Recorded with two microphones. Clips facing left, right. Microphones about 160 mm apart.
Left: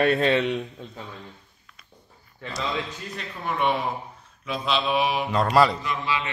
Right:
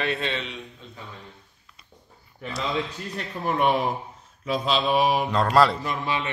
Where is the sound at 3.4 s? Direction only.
40° right (ahead or behind).